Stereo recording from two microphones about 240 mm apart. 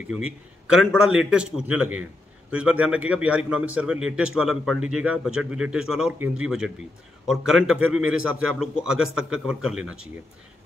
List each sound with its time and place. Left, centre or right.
0.1 s a man's voice: centre